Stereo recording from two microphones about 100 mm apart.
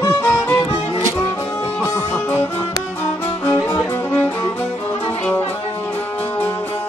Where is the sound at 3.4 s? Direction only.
25° left (ahead or behind).